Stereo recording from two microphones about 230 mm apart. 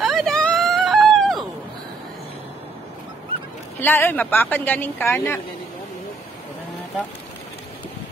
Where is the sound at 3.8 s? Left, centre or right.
Centre.